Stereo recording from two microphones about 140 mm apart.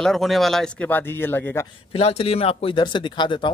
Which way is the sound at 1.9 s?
45° left (ahead or behind).